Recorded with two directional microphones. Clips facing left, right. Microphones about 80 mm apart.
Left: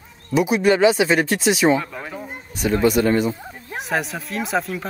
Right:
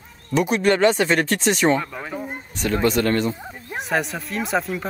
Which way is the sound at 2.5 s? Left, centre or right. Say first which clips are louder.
Left 3 dB; centre.